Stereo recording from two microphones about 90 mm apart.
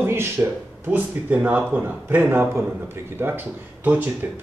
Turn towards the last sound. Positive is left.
turn(degrees=-20)  # may be behind; listen again after turning